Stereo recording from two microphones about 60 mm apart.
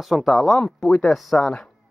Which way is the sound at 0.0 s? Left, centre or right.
Centre.